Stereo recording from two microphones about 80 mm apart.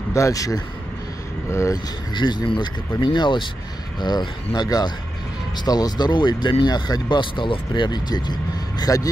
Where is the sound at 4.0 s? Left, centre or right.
Left.